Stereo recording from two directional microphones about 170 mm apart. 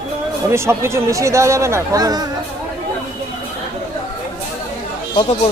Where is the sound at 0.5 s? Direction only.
15° right (ahead or behind).